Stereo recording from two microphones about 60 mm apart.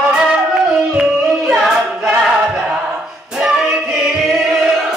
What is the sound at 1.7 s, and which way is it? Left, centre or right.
Choir, centre.